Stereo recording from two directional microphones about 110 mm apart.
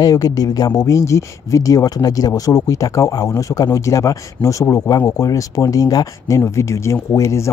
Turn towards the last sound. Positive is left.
turn(degrees=25)  # may be behind; listen again after turning